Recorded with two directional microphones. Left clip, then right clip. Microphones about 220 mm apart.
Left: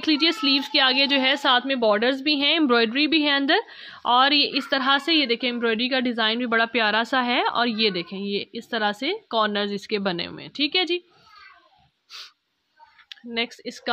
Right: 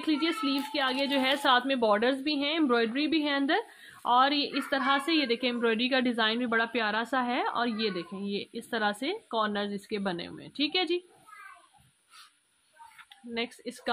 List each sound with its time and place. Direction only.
0.0 s a woman's voice: 40° left (ahead or behind)
13.1 s speech: 30° left (ahead or behind)